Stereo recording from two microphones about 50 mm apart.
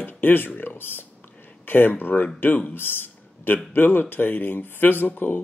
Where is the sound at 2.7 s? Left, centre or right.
Left.